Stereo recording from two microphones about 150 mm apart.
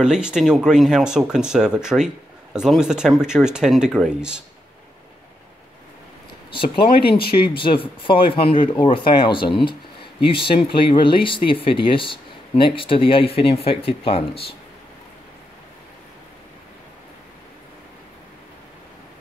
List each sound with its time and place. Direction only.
0.0 s speech: 5° right (ahead or behind)
6.5 s speech: 35° left (ahead or behind)